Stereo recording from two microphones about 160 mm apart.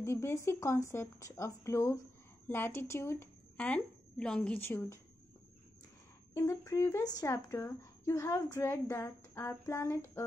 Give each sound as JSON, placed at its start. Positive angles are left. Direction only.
{"t": 0.0, "sound": "speech", "side_deg": 15}
{"t": 6.3, "sound": "speech", "side_deg": 20}